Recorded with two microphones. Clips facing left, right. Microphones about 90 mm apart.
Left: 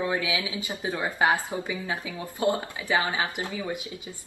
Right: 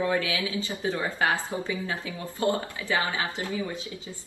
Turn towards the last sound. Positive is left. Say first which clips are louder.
# left 1 dB
turn(degrees=20)  # may be behind; listen again after turning